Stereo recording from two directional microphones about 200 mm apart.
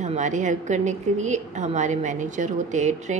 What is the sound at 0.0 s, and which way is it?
A woman's voice, 35° right (ahead or behind).